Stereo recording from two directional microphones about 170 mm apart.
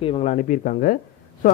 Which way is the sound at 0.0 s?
40° left (ahead or behind).